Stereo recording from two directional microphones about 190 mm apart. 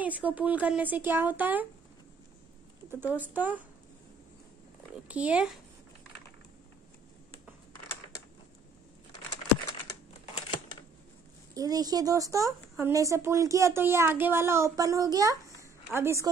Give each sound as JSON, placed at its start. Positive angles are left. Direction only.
{"t": 0.0, "sound": "speech", "side_deg": -10}
{"t": 3.2, "sound": "speech", "side_deg": -10}
{"t": 5.0, "sound": "speech", "side_deg": -5}
{"t": 11.5, "sound": "speech", "side_deg": -20}